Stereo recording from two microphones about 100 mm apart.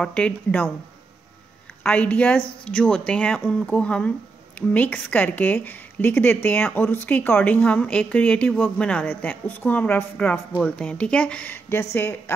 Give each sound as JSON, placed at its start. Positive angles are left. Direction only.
{"t": 0.0, "sound": "a woman's voice", "side_deg": 10}
{"t": 1.8, "sound": "a woman's voice", "side_deg": 15}